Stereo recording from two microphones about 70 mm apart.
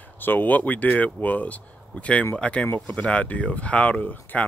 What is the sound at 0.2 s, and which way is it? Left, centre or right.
Speech, left.